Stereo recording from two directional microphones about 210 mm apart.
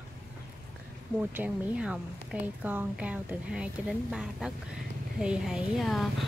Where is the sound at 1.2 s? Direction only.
10° right (ahead or behind).